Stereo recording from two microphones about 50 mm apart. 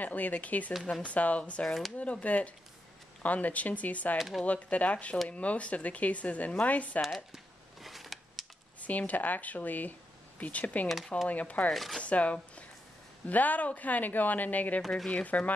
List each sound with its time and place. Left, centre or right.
0.0 s speech: left
1.7 s speech: centre
2.2 s speech: left
4.2 s speech: centre
4.5 s speech: left
7.3 s a sound: centre
8.8 s speech: left
11.7 s speech: centre
12.0 s speech: left